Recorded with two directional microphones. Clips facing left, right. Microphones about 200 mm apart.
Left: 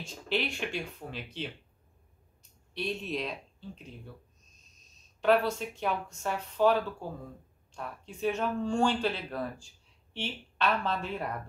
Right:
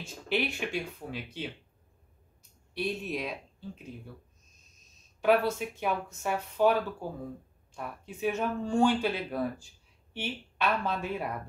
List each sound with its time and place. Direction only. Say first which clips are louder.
0.0 s speech: right 1 dB; 5° right (ahead or behind)
2.7 s speech: right 1 dB; 5° right (ahead or behind)
5.2 s speech: even; 10° right (ahead or behind)